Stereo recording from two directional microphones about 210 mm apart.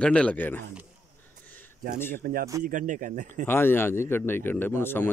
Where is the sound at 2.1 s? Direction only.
45° right (ahead or behind).